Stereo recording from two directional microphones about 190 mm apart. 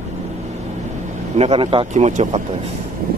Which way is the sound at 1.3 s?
35° right (ahead or behind).